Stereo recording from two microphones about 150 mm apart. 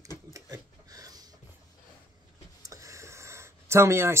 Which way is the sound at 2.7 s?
20° right (ahead or behind).